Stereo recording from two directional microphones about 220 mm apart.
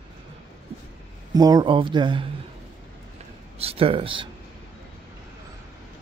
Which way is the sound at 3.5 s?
25° right (ahead or behind).